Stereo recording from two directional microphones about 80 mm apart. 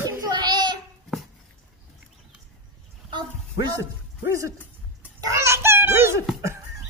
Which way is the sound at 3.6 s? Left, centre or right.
Right.